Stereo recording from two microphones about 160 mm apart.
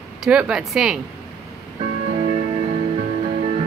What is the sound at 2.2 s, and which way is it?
Music, 40° right (ahead or behind).